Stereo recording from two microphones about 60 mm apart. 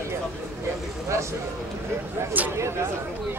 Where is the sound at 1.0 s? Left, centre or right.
Right.